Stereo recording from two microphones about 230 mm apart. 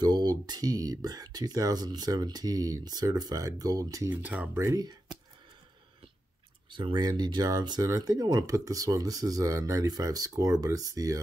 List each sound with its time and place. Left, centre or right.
0.0 s speech: centre
6.7 s speech: centre